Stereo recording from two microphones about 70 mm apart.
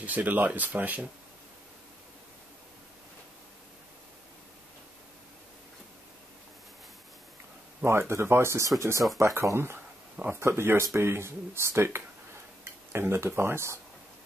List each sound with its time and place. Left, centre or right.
0.0 s speech: right
7.8 s speech: right